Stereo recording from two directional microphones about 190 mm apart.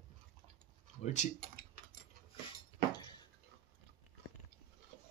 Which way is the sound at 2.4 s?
20° left (ahead or behind).